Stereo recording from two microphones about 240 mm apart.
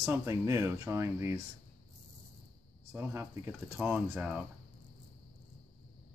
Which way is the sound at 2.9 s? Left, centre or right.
Centre.